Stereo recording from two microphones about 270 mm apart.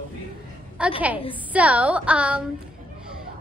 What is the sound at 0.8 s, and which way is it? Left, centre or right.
A woman's voice, centre.